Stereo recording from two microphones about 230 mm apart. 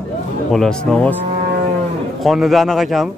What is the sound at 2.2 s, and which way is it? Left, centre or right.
Speech, centre.